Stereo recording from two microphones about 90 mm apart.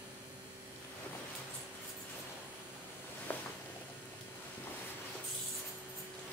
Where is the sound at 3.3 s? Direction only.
20° left (ahead or behind).